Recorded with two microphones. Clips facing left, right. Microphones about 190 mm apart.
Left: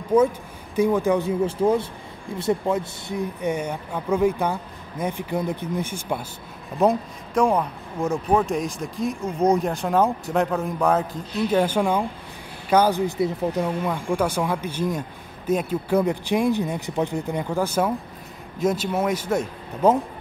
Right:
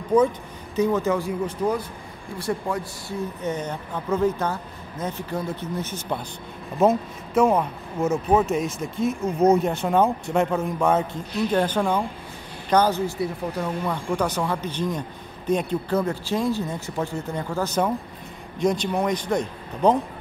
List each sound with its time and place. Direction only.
0.7 s speech: 10° left (ahead or behind)
6.8 s speech: 5° right (ahead or behind)